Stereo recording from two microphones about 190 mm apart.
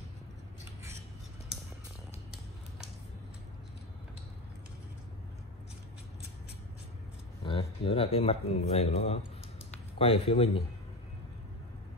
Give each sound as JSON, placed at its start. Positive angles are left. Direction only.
{"t": 7.4, "sound": "speech", "side_deg": 30}